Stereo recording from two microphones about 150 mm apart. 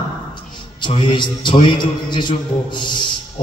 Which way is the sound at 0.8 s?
35° left (ahead or behind).